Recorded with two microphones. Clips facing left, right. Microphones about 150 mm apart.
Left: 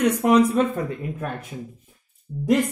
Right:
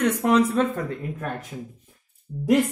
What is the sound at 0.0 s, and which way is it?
Speech, 15° left (ahead or behind).